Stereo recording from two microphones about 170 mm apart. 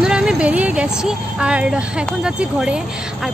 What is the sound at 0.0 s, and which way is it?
Speech, 5° right (ahead or behind).